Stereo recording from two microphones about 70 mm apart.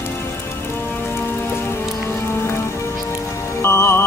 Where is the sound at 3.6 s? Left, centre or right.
Left.